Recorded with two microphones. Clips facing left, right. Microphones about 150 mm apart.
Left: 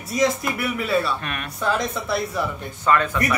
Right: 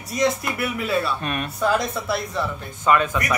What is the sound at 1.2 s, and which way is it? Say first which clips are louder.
Speech: right 4 dB; 20° right (ahead or behind).